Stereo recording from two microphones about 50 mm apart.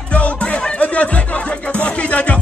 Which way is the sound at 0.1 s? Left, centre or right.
Left.